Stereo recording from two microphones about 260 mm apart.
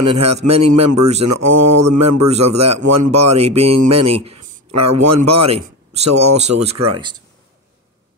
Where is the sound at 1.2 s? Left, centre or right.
Right.